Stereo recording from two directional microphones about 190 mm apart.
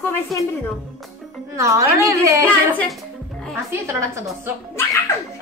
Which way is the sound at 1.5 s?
15° right (ahead or behind).